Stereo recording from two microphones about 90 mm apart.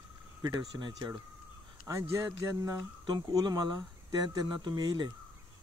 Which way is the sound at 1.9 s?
30° right (ahead or behind).